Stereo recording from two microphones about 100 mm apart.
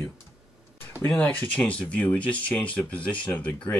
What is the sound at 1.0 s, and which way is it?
Speech, 15° left (ahead or behind).